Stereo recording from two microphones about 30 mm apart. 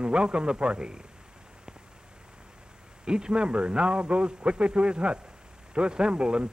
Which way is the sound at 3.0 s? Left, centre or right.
Right.